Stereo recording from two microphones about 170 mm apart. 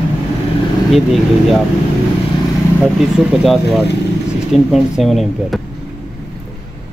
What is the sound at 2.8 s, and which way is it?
Speech, 5° right (ahead or behind).